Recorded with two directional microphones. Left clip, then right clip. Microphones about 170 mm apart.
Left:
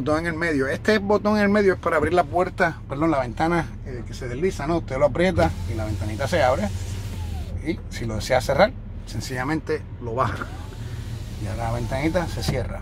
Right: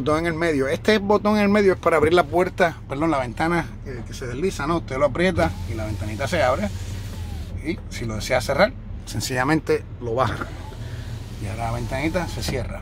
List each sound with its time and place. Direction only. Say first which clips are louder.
0.0 s speech: right 2 dB; 10° right (ahead or behind)
9.1 s speech: right 5 dB; 40° right (ahead or behind); by 10.5 s 20° right (ahead or behind)
11.4 s speech: even; centre (ahead or behind)